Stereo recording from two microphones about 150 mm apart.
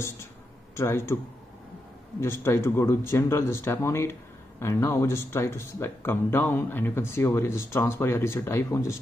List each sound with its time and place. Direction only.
0.7 s speech: 15° left (ahead or behind)